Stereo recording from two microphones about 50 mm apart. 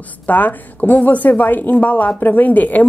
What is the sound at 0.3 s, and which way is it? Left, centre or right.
A woman's voice, left.